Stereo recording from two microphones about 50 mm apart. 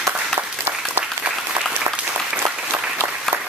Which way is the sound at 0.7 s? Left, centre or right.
Right.